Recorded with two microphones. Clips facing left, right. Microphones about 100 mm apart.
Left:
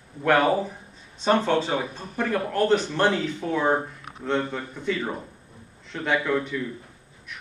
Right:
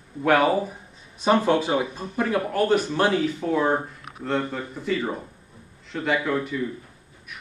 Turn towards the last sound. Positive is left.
turn(degrees=-5)  # may be behind; listen again after turning